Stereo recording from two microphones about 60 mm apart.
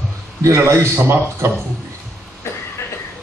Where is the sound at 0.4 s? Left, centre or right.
Right.